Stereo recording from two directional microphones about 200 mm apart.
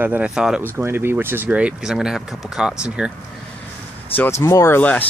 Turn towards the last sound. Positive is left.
turn(degrees=10)  # may be behind; listen again after turning